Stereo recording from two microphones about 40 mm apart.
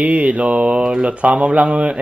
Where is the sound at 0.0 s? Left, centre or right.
Right.